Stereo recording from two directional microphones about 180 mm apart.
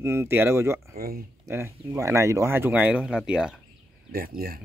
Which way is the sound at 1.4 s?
15° right (ahead or behind).